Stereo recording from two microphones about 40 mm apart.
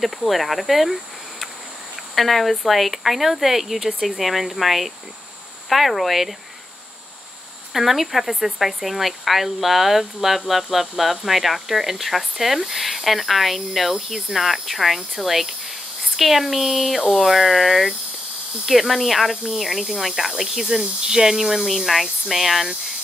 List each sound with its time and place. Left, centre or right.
0.3 s speech: centre
2.1 s speech: centre
7.7 s speech: centre